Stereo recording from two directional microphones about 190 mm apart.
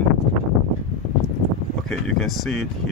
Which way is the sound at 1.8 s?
5° left (ahead or behind).